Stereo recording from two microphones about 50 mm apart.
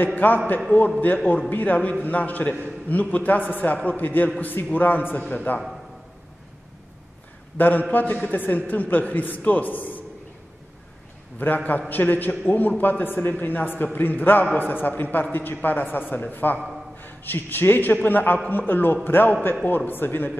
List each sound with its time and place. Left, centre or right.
0.0 s a man's voice: left
7.5 s a man's voice: left
11.3 s a man's voice: left